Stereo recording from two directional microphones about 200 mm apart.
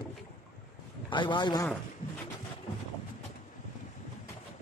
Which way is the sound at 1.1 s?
25° left (ahead or behind).